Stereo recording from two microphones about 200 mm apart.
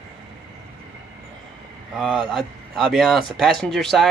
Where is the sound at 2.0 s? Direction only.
Centre (ahead or behind).